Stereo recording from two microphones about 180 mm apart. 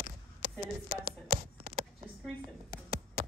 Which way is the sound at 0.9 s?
60° right (ahead or behind).